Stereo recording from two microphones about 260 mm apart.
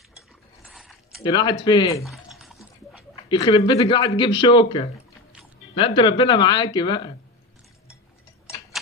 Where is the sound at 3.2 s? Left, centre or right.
Centre.